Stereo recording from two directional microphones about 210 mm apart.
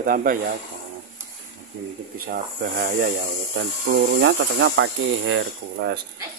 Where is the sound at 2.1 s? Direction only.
40° right (ahead or behind).